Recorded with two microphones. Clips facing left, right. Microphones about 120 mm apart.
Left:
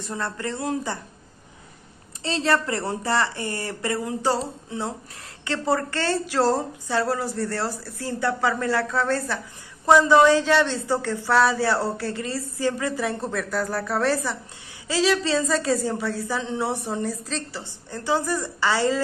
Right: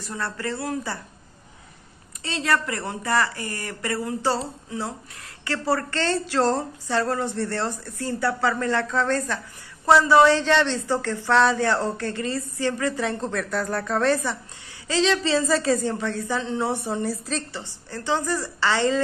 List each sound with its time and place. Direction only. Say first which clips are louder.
0.0 s speech: left 1 dB; 20° left (ahead or behind)
2.2 s a woman's voice: left 2 dB; 30° left (ahead or behind); by 17.4 s 5° right (ahead or behind)
17.6 s speech: left 2 dB; 15° left (ahead or behind)